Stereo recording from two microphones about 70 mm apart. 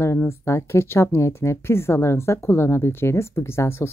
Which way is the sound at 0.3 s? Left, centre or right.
Left.